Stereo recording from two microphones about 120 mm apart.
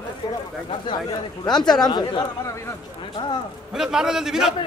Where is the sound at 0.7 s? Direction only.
40° left (ahead or behind).